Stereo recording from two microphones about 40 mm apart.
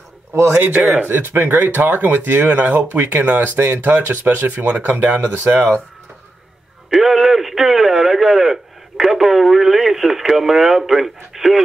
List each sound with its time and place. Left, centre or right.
0.3 s speech: right
3.5 s speech: right
3.8 s speech: right
5.0 s speech: right
6.9 s a man's voice: centre